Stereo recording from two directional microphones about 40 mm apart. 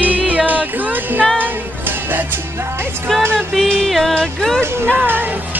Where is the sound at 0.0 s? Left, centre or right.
Right.